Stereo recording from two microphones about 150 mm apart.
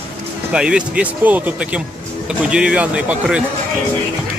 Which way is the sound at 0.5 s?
5° right (ahead or behind).